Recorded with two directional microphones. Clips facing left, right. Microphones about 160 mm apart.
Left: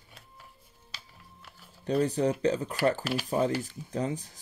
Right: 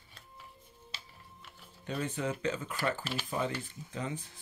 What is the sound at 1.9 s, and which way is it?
Speech, 35° left (ahead or behind).